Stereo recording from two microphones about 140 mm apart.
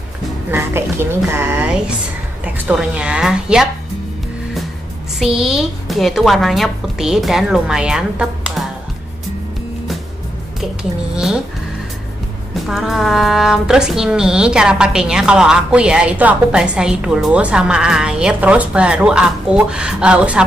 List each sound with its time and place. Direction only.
0.5 s a woman's voice: 15° right (ahead or behind)
5.2 s speech: 5° right (ahead or behind)
10.6 s speech: 5° right (ahead or behind)
12.5 s speech: centre (ahead or behind)